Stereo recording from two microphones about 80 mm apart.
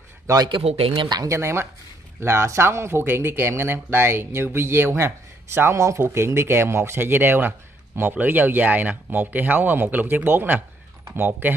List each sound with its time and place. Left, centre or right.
0.5 s speech: right
1.2 s speech: right